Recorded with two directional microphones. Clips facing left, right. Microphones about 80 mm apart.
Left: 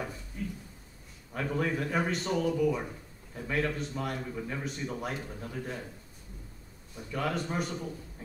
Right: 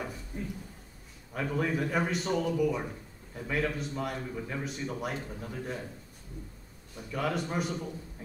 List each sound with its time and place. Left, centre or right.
0.3 s a sound: right
1.3 s a man's voice: centre
7.0 s a man's voice: centre